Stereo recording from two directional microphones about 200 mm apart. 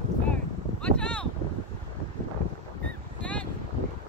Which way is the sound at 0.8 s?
5° left (ahead or behind).